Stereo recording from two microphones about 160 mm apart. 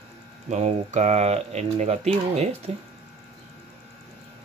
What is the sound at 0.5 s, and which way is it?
Speech, 45° right (ahead or behind).